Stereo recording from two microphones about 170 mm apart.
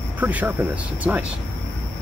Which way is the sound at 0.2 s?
10° right (ahead or behind).